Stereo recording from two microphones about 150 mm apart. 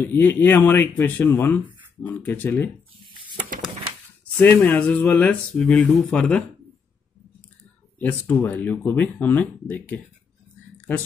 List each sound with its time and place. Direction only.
0.0 s speech: 15° left (ahead or behind)
3.3 s a sound: 65° right (ahead or behind)
4.4 s speech: 10° left (ahead or behind)
8.0 s speech: 10° left (ahead or behind)